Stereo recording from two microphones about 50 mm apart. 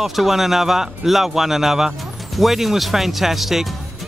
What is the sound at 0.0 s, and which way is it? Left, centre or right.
Speech, centre.